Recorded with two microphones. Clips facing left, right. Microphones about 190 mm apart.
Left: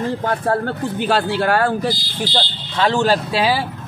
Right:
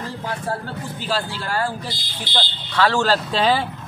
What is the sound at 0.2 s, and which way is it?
Speech, 60° left (ahead or behind).